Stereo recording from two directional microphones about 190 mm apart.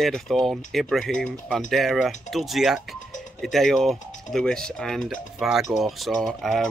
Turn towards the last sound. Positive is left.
turn(degrees=0)  # may be behind; listen again after turning